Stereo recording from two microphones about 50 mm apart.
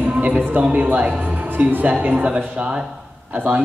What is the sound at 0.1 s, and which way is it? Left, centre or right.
A woman's voice, right.